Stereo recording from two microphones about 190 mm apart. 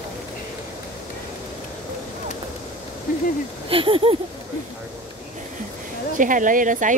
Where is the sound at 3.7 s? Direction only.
30° right (ahead or behind).